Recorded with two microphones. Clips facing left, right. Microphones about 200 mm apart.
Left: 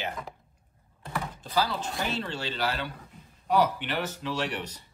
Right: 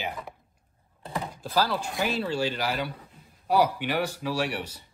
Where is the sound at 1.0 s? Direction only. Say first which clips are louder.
Right 1 dB; 30° right (ahead or behind).